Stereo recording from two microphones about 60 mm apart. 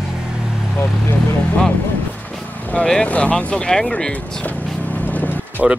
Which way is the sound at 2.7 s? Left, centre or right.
Left.